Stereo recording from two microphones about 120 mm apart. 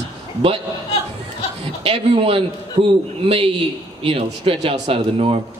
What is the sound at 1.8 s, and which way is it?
Speech, 50° right (ahead or behind).